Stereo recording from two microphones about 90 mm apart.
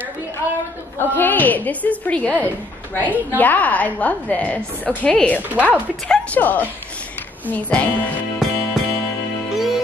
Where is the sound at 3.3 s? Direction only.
20° left (ahead or behind).